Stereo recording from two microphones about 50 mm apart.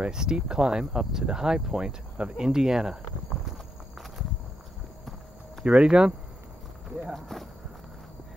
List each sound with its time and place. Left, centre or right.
0.0 s speech: centre
5.7 s speech: centre
7.1 s speech: centre